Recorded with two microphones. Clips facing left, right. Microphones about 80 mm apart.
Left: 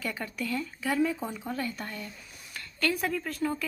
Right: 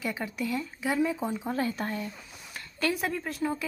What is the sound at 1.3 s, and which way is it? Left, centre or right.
Speech, right.